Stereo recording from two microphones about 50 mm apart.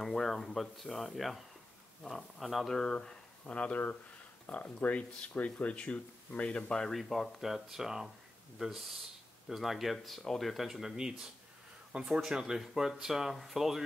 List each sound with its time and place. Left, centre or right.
0.0 s speech: centre
2.7 s speech: centre
3.5 s speech: left
6.8 s speech: centre